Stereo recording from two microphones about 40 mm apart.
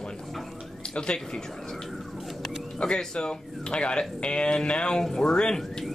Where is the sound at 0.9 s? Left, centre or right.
Left.